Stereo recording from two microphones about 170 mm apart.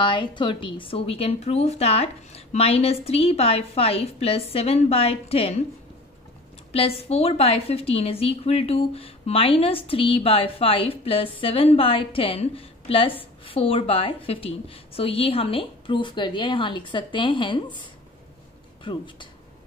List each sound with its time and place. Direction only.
0.0 s a woman's voice: 30° left (ahead or behind)
6.7 s a woman's voice: 35° left (ahead or behind)
18.9 s speech: 30° left (ahead or behind)